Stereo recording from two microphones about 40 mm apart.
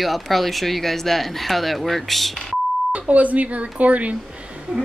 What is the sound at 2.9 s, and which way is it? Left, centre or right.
Speech, right.